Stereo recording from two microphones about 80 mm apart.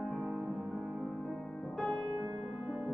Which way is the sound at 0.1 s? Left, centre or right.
Centre.